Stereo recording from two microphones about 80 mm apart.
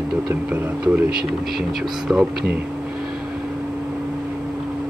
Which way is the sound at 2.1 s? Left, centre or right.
Centre.